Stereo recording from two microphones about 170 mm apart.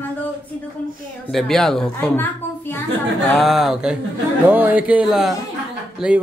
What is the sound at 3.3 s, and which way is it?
A man's voice, centre (ahead or behind).